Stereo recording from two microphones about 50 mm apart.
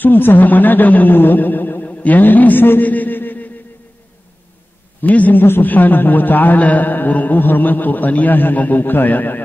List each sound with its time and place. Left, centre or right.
0.0 s a man's voice: left
2.9 s a sound: left
5.0 s a man's voice: left